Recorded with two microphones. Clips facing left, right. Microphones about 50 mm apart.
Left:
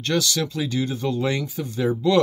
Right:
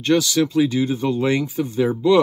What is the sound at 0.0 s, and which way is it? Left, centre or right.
Speech, centre.